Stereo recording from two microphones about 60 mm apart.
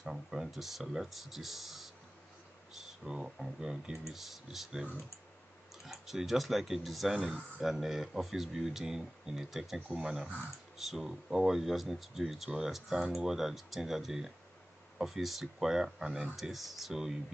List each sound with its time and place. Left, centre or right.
0.0 s speech: centre
5.9 s speech: centre
9.8 s speech: right
10.0 s speech: centre